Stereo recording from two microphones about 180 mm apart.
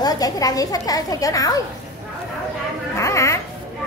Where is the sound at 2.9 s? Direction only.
15° left (ahead or behind).